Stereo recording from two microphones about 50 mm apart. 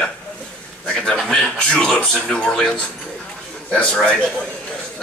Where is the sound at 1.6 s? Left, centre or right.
Left.